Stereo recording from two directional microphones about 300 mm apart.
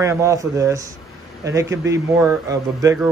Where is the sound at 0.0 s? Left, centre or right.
Centre.